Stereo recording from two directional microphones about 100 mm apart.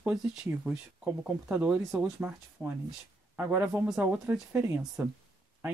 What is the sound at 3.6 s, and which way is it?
Speech, 10° right (ahead or behind).